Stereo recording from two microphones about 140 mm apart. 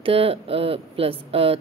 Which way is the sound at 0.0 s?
40° right (ahead or behind).